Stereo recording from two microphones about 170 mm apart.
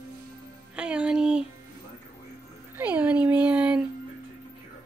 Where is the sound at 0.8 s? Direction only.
5° right (ahead or behind).